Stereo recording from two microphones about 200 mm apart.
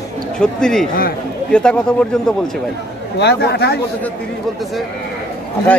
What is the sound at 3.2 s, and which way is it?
Speech, 55° left (ahead or behind).